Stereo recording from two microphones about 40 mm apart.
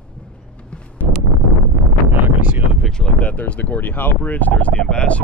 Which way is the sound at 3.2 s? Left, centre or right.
Left.